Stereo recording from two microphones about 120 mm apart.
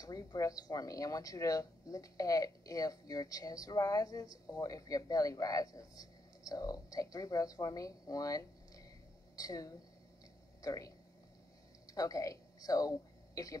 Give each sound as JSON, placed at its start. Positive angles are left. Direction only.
{"t": 0.0, "sound": "speech", "side_deg": 30}
{"t": 11.9, "sound": "speech", "side_deg": 30}